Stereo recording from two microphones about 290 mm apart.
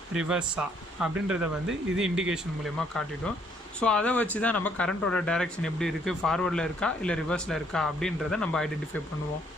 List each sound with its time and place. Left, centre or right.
0.1 s speech: centre